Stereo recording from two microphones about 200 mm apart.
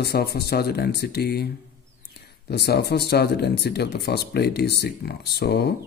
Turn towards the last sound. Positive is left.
turn(degrees=55)  # may be behind; listen again after turning